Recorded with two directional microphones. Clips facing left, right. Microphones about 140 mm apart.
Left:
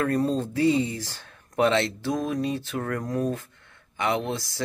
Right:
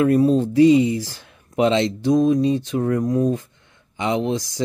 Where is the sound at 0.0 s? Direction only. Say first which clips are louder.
Right 8 dB; 15° right (ahead or behind).